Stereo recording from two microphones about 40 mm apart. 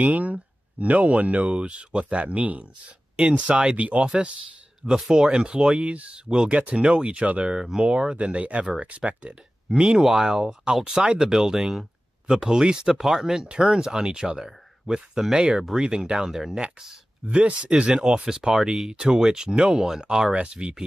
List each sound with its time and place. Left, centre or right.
0.0 s speech: right
5.0 s speech: centre; by 9.3 s right
9.7 s speech: right
13.0 s speech: centre
15.8 s speech: right
17.3 s speech: right
18.5 s speech: centre; by 20.7 s right